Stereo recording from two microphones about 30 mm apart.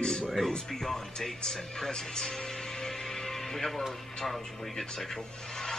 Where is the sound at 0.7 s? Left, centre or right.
Centre.